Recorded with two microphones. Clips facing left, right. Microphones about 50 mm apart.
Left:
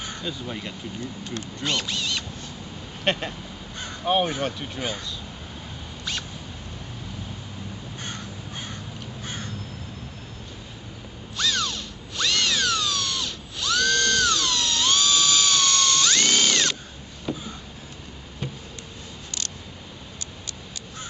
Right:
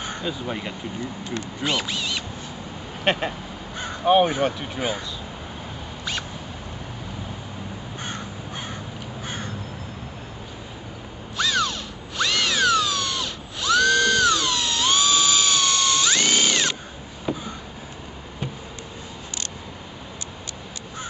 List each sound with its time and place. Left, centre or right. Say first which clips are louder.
0.0 s speech: right 4 dB; centre
8.0 s crow: right 3 dB; centre
11.3 s a sound: right 3 dB; centre